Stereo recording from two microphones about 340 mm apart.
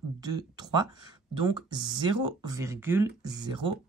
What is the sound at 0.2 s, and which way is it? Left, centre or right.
Speech, centre.